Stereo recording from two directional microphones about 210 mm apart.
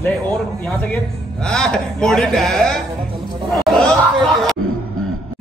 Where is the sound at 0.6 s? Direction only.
5° left (ahead or behind).